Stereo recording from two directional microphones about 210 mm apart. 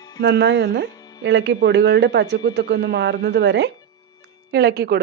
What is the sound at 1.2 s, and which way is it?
A man's voice, 60° right (ahead or behind).